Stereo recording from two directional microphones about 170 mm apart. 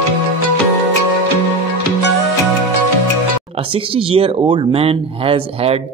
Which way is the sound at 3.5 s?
30° right (ahead or behind).